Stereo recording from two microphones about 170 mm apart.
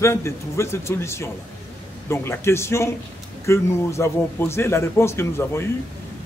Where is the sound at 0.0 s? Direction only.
15° left (ahead or behind).